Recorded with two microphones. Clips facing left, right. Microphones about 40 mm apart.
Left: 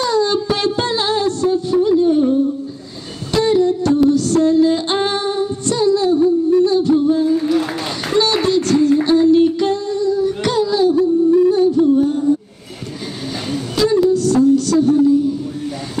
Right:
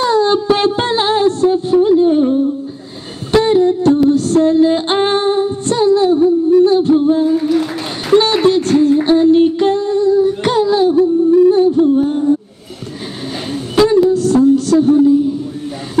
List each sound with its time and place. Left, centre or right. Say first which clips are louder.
0.0 s music: right 4 dB; right
3.3 s humming: right 3 dB; right
4.1 s female singing: right 2 dB; right
8.2 s music: even; right
13.5 s a sound: right 5 dB; right
14.1 s music: right 2 dB; right